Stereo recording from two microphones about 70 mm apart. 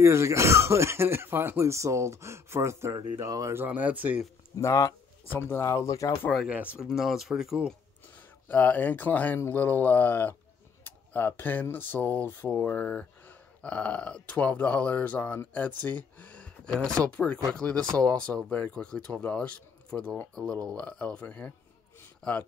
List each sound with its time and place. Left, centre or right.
0.0 s speech: right
3.3 s speech: right
3.5 s speech: right
4.6 s speech: left
5.2 s speech: left
5.6 s speech: left
6.5 s speech: centre
7.0 s speech: centre
8.5 s a man's voice: left